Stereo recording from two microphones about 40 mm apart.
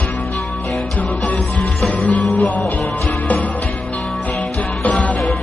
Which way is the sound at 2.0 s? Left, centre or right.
Left.